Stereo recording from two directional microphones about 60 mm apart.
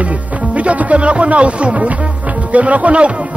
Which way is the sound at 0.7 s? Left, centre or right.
Right.